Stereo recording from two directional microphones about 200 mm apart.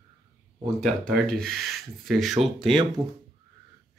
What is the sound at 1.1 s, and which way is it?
Speech, centre (ahead or behind).